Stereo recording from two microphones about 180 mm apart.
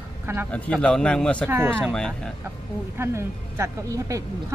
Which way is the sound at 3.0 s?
15° right (ahead or behind).